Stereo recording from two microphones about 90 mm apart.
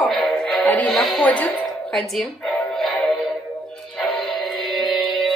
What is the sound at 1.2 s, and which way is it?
Speech, 15° left (ahead or behind).